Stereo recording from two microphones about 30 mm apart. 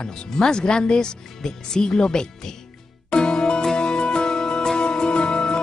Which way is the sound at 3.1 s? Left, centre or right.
Left.